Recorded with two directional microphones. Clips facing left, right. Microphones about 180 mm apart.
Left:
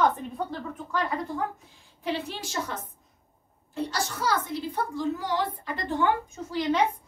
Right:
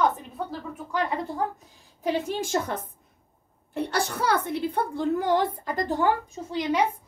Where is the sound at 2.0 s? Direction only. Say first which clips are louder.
Right 5 dB; 45° right (ahead or behind).